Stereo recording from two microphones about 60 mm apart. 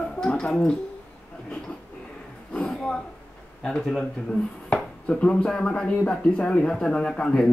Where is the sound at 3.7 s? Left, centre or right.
Centre.